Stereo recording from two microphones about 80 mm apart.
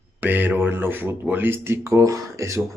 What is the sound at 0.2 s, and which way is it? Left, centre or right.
Speech, right.